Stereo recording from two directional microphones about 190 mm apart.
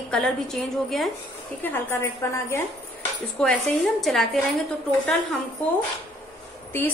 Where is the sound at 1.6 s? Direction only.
10° left (ahead or behind).